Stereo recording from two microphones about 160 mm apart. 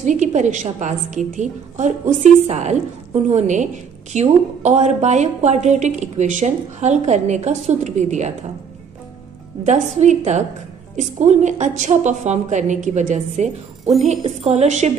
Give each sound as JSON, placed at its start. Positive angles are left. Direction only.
{"t": 0.0, "sound": "a woman's voice", "side_deg": -50}
{"t": 9.7, "sound": "a woman's voice", "side_deg": -45}